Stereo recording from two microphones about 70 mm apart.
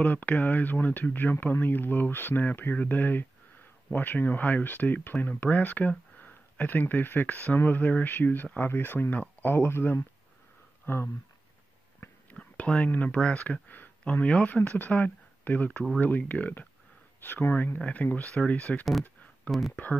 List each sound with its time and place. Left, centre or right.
0.0 s speech: left
12.0 s whispering: left
12.9 s speech: left
17.7 s speech: left